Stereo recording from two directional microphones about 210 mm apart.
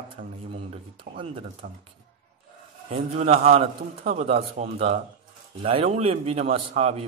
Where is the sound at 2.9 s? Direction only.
30° right (ahead or behind).